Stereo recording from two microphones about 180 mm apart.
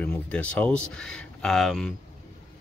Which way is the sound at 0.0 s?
5° left (ahead or behind).